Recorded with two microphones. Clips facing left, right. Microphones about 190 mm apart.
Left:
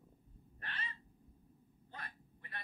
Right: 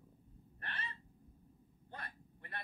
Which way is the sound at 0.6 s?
55° right (ahead or behind).